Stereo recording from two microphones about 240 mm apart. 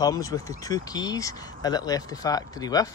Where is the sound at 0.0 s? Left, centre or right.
Centre.